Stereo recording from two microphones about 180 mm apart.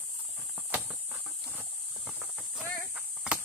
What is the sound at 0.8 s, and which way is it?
Livestock, 10° right (ahead or behind).